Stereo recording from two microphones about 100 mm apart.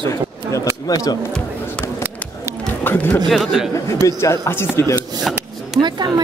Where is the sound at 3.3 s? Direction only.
Centre (ahead or behind).